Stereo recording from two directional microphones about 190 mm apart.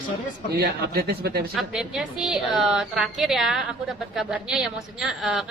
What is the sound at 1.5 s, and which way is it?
A woman's voice, 5° right (ahead or behind).